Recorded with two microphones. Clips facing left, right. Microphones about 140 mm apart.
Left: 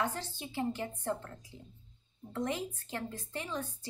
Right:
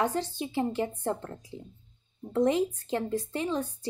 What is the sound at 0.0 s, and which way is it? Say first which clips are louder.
A woman's voice: right 7 dB; 20° right (ahead or behind).